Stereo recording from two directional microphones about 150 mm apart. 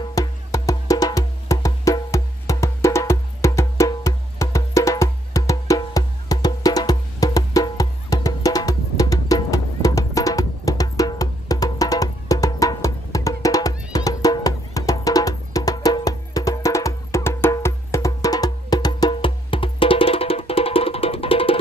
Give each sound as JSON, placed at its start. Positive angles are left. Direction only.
{"t": 0.1, "sound": "wood block", "side_deg": 25}